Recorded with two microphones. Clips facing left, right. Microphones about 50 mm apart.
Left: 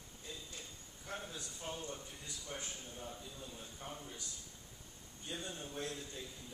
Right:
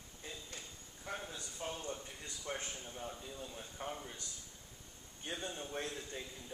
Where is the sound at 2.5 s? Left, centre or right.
Right.